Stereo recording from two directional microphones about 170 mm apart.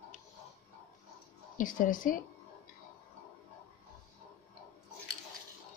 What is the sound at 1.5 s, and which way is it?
Speech, 50° left (ahead or behind).